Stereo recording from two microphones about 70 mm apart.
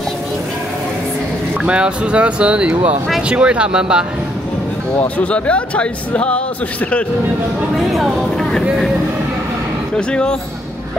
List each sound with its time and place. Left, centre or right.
1.6 s speech: centre
5.0 s speech: left
7.9 s speech: centre
9.9 s speech: centre